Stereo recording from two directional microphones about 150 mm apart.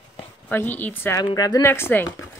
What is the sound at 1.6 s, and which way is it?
Speech, 15° left (ahead or behind).